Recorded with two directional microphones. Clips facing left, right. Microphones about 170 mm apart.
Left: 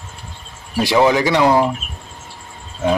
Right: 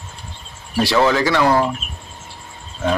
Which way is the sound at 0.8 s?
15° left (ahead or behind).